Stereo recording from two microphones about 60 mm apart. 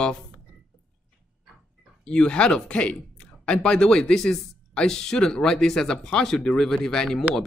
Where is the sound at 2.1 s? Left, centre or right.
Centre.